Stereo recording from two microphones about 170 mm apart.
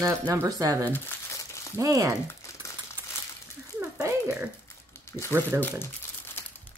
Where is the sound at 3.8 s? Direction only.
10° right (ahead or behind).